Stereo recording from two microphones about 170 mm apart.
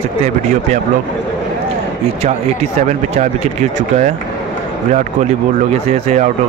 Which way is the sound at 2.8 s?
45° right (ahead or behind).